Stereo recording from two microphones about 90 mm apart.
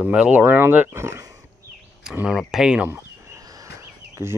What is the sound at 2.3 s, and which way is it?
Speech, 5° right (ahead or behind).